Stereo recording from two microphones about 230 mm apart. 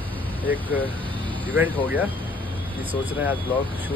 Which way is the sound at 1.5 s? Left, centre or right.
Centre.